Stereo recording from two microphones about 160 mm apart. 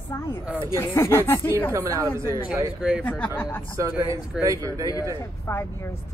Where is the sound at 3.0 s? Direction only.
10° left (ahead or behind).